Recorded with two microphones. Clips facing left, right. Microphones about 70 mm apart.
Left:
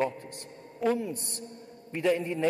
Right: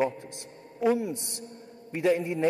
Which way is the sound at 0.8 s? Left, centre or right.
Centre.